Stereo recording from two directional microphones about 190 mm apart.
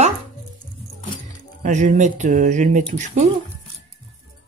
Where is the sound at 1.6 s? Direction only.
40° right (ahead or behind).